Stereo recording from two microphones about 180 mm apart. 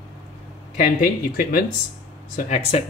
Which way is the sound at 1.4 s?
50° left (ahead or behind).